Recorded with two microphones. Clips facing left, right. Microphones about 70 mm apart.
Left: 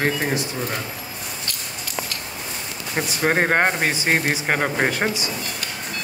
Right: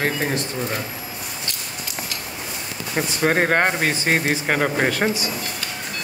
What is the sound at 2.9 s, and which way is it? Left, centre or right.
A man's voice, centre.